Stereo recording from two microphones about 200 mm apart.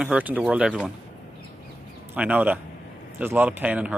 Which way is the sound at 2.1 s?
5° right (ahead or behind).